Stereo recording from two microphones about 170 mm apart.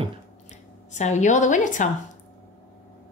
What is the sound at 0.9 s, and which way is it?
Speech, 45° left (ahead or behind).